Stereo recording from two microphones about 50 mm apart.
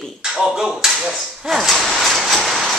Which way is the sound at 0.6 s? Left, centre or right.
Centre.